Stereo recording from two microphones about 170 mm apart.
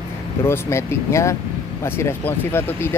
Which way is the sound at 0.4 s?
15° left (ahead or behind).